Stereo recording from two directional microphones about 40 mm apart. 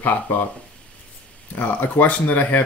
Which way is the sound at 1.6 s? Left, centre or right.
Left.